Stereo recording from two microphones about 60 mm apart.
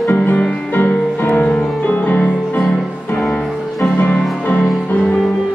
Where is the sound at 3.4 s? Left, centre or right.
Centre.